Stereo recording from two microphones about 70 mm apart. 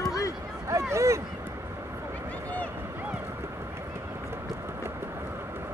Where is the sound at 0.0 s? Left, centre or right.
Left.